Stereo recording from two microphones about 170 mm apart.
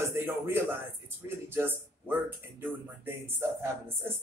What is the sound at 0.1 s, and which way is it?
A man's voice, 15° right (ahead or behind).